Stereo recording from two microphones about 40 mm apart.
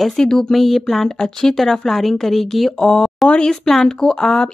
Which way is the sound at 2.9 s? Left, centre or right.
Centre.